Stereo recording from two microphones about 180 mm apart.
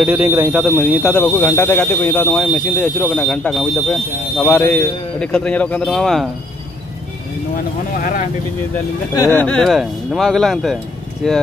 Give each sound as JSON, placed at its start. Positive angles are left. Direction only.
{"t": 0.0, "sound": "speech", "side_deg": -10}
{"t": 0.6, "sound": "speech", "side_deg": 5}
{"t": 8.0, "sound": "speech", "side_deg": 50}
{"t": 9.1, "sound": "speech", "side_deg": 15}